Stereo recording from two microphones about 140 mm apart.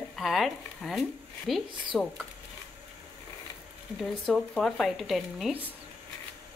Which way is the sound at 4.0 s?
Centre (ahead or behind).